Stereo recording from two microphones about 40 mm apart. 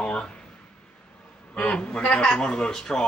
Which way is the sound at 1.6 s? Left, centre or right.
Left.